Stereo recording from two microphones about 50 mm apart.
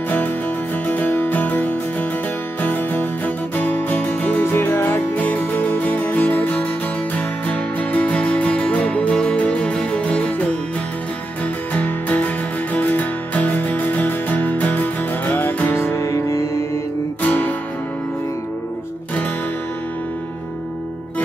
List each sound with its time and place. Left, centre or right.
0.8 s music: left
4.4 s music: left
9.1 s music: centre; by 16.0 s left
16.0 s music: left
17.2 s music: left